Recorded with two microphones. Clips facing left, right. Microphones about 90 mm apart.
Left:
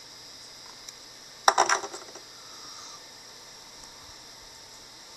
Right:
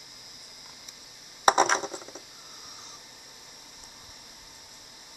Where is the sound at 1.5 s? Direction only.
15° right (ahead or behind).